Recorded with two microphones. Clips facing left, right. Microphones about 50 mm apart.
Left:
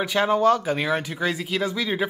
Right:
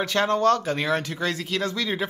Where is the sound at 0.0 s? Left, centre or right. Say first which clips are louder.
Left 1 dB; centre.